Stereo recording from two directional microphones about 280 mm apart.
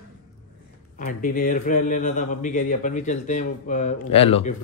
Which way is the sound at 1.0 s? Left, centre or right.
Left.